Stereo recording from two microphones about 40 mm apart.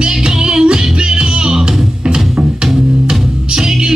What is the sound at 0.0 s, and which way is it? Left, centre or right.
Music, centre.